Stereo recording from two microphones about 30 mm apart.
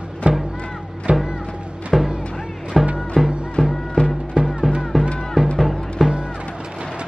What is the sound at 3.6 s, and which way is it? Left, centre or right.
Music, centre.